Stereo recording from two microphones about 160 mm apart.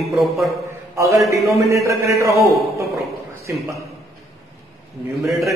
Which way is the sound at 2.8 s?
20° right (ahead or behind).